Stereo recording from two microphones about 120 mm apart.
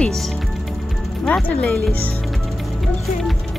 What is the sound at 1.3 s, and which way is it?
Speech, 10° left (ahead or behind).